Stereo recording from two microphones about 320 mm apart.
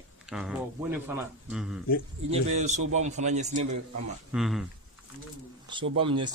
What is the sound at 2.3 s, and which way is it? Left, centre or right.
A man's voice, right.